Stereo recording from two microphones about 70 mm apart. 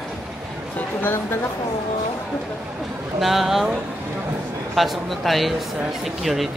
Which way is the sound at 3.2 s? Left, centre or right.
Centre.